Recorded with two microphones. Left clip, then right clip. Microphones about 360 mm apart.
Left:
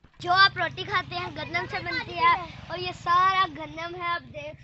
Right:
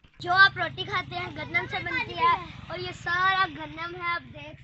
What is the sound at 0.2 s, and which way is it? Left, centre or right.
Speech, centre.